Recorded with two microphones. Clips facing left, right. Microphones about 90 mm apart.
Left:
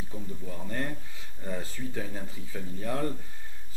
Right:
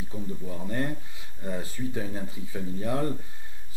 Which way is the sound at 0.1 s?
10° right (ahead or behind).